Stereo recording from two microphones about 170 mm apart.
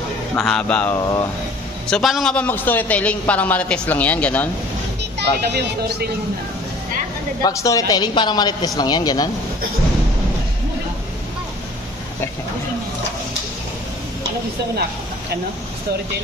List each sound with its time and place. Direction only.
0.4 s a man's voice: 5° left (ahead or behind)
5.2 s speech: 80° right
7.4 s speech: 20° left (ahead or behind)